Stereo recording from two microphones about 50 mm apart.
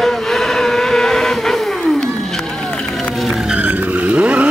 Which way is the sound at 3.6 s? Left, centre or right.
Right.